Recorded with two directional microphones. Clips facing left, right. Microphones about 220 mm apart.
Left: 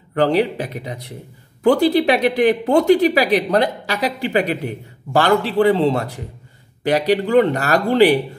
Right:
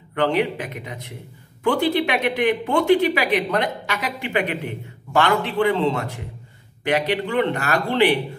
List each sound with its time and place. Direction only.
0.1 s speech: 35° left (ahead or behind)